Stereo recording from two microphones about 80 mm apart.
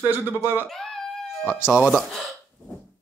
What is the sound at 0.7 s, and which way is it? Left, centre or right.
Speech, centre.